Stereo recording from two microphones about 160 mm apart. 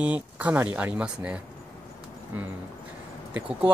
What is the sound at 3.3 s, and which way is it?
Speech, 10° right (ahead or behind).